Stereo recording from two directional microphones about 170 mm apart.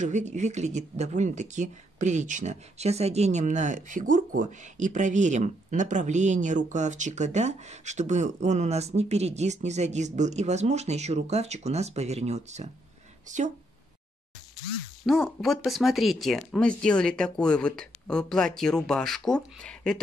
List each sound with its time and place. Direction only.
0.0 s speech: 45° right (ahead or behind)
15.0 s speech: centre (ahead or behind)